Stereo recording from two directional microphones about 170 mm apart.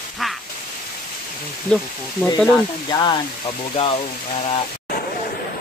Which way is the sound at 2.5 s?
25° left (ahead or behind).